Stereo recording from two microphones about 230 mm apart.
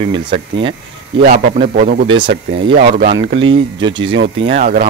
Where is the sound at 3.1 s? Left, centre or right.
Right.